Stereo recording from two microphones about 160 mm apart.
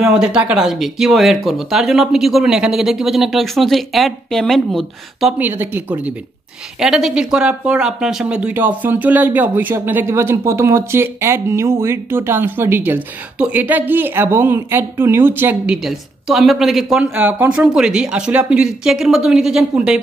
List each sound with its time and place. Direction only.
0.0 s speech: 5° right (ahead or behind)
5.4 s speech: 15° right (ahead or behind)
17.1 s speech: 10° right (ahead or behind)